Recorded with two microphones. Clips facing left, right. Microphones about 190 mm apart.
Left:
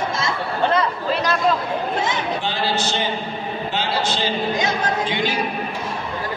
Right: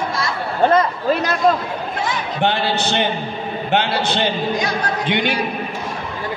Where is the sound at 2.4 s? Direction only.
65° right (ahead or behind).